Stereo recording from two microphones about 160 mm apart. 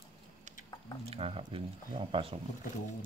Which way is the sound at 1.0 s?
35° right (ahead or behind).